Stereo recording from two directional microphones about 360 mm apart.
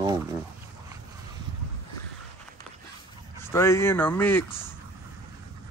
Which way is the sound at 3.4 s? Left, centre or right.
Centre.